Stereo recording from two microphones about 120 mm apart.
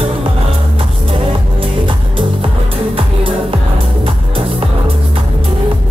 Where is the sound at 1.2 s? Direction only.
45° right (ahead or behind).